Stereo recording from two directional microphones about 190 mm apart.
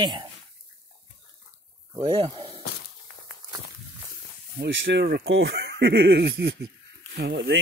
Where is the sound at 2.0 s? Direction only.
25° right (ahead or behind).